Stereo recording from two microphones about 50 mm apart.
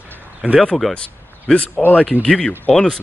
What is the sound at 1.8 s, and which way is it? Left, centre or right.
Speech, centre.